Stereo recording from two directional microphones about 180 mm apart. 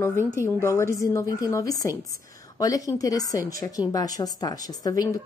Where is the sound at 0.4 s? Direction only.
15° left (ahead or behind).